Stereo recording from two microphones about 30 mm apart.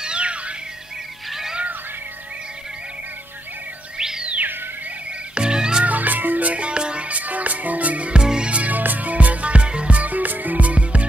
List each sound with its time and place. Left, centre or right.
0.0 s music: right
5.3 s music: right
5.9 s cat: right
6.6 s music: right
7.1 s music: right
8.1 s music: right
8.6 s music: right
10.0 s music: right